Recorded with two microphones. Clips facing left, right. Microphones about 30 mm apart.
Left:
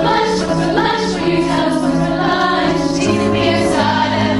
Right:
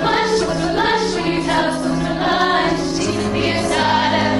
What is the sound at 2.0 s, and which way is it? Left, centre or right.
Music, centre.